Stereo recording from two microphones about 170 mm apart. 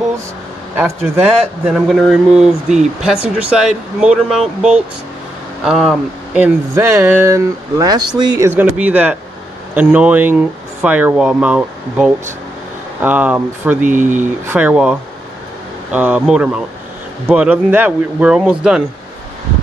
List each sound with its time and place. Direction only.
0.7 s speech: 15° right (ahead or behind)
1.7 s speech: centre (ahead or behind); by 8.5 s 25° right (ahead or behind)
8.5 s speech: 10° right (ahead or behind)
13.8 s speech: 50° right (ahead or behind)
14.2 s speech: 10° right (ahead or behind)